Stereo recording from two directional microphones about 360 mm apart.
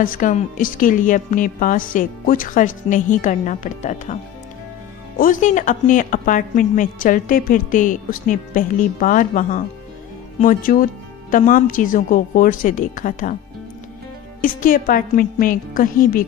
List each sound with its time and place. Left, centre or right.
0.0 s a woman's voice: left
14.4 s a woman's voice: left